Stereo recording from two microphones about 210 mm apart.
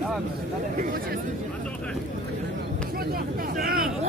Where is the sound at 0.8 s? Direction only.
40° right (ahead or behind).